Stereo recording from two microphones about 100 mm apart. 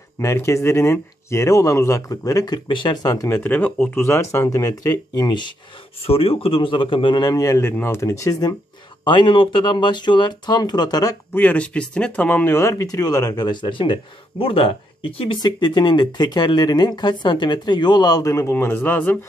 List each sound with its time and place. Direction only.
0.2 s speech: 30° left (ahead or behind)
2.7 s speech: 50° left (ahead or behind)
3.3 s speech: 15° left (ahead or behind); by 5.5 s 45° left (ahead or behind)
6.0 s a man's voice: 75° left (ahead or behind); by 8.5 s 35° left (ahead or behind)
9.0 s speech: 55° left (ahead or behind)
11.3 s speech: 15° left (ahead or behind)
12.5 s speech: 30° left (ahead or behind); by 13.9 s 55° left (ahead or behind)
14.4 s a man's voice: 65° left (ahead or behind)
15.4 s speech: 45° left (ahead or behind); by 19.1 s 20° left (ahead or behind)